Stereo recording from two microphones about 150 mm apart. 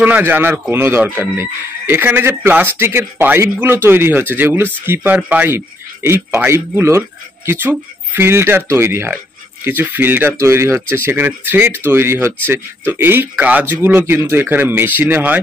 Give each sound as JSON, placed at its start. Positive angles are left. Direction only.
{"t": 0.0, "sound": "speech", "side_deg": -10}